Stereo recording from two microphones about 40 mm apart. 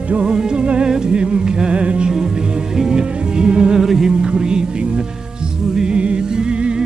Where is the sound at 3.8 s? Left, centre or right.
Centre.